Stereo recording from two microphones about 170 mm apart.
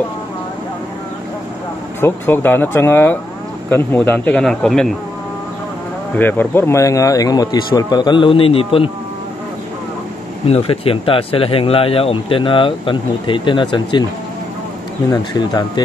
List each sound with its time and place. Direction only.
2.0 s speech: 15° left (ahead or behind)
6.1 s speech: 10° left (ahead or behind); by 8.9 s 35° left (ahead or behind)
10.4 s speech: 35° left (ahead or behind)
15.0 s speech: 25° left (ahead or behind)